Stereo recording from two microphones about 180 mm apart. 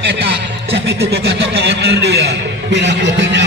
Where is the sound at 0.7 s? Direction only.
60° right (ahead or behind); by 3.4 s 80° right.